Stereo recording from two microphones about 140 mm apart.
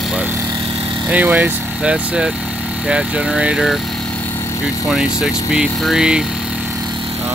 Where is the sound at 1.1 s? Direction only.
10° right (ahead or behind).